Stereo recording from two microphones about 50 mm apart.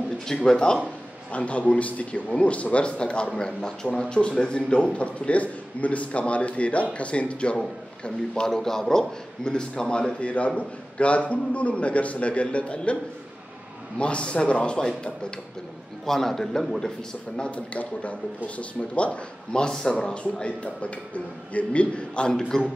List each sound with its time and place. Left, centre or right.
0.3 s a man's voice: centre
1.3 s a man's voice: left
13.9 s a man's voice: left
17.4 s a man's voice: left